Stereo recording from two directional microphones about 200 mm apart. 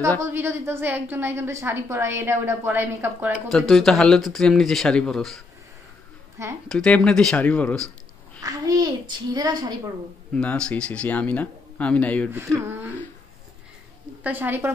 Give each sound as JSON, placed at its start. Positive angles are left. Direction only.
{"t": 0.2, "sound": "a woman's voice", "side_deg": -10}
{"t": 6.7, "sound": "speech", "side_deg": 5}
{"t": 8.4, "sound": "a sound", "side_deg": -20}
{"t": 9.3, "sound": "a woman's voice", "side_deg": -20}
{"t": 10.3, "sound": "speech", "side_deg": 5}
{"t": 14.2, "sound": "a woman's voice", "side_deg": -10}